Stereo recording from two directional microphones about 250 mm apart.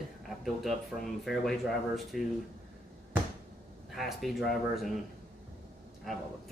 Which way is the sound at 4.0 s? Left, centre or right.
Centre.